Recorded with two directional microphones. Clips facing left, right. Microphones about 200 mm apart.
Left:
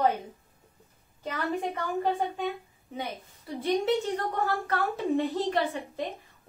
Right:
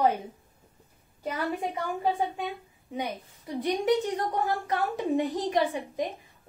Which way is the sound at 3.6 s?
15° right (ahead or behind).